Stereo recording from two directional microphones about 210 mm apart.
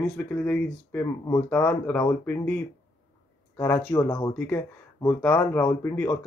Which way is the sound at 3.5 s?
10° left (ahead or behind).